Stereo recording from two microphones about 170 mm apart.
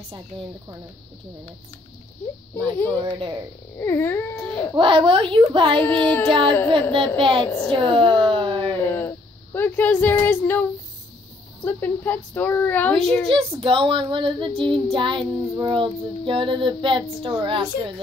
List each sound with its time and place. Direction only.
2.9 s child singing: 30° right (ahead or behind)
3.8 s a child's voice: 15° left (ahead or behind)
4.7 s a child's voice: 30° right (ahead or behind)
5.8 s a child's voice: 10° left (ahead or behind)
6.7 s a child's voice: 30° right (ahead or behind)
8.2 s a sound: 30° right (ahead or behind)
8.7 s a sound: 10° left (ahead or behind)
11.6 s a child's voice: 10° left (ahead or behind)
13.3 s child singing: 30° right (ahead or behind)